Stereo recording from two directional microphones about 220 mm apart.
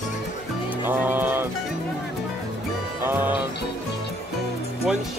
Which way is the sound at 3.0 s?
10° right (ahead or behind).